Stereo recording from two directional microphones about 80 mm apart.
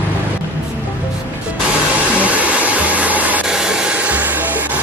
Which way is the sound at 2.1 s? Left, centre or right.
Centre.